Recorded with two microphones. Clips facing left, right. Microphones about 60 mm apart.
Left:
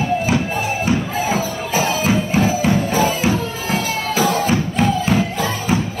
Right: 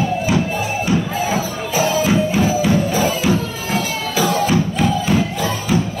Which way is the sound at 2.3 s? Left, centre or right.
Left.